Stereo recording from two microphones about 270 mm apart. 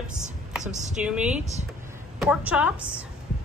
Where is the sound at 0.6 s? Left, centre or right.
Right.